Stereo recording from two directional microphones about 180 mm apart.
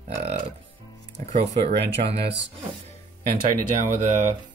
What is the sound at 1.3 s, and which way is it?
Speech, 35° right (ahead or behind).